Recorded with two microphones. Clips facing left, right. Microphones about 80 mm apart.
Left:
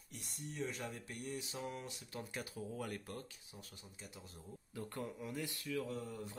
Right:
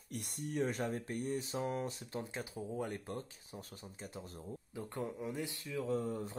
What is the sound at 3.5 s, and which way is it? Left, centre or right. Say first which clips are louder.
Speech: right 7 dB; right.